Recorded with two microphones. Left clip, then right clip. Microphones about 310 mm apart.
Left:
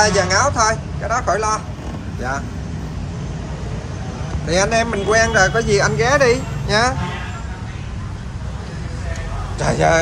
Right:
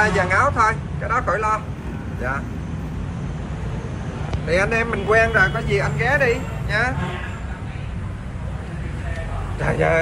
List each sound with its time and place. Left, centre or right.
0.0 s a man's voice: centre
4.5 s a man's voice: centre
9.6 s a man's voice: centre